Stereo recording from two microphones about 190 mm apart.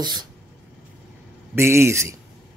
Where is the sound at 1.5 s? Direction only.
15° right (ahead or behind).